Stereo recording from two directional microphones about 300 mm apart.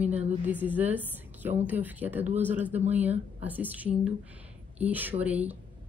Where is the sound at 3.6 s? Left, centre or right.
Centre.